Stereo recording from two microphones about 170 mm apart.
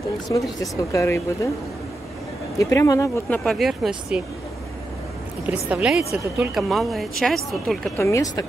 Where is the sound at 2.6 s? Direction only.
20° left (ahead or behind); by 4.2 s centre (ahead or behind).